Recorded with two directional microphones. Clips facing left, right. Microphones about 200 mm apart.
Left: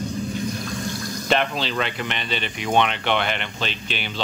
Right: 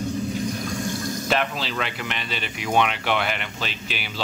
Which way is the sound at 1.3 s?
5° right (ahead or behind).